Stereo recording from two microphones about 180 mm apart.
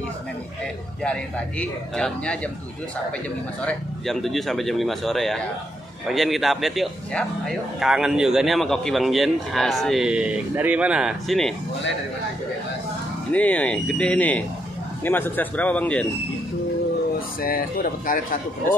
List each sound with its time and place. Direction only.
1.0 s speech: 5° left (ahead or behind)
3.6 s speech: centre (ahead or behind)
13.3 s speech: 10° left (ahead or behind)
17.4 s speech: 55° left (ahead or behind)